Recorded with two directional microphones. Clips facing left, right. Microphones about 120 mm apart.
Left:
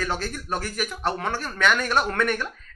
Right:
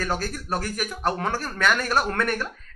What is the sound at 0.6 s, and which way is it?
Speech, 45° right (ahead or behind).